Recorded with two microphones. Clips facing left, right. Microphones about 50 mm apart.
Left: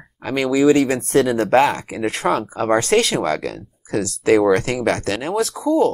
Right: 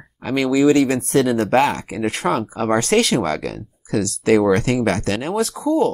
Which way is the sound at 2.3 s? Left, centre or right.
Left.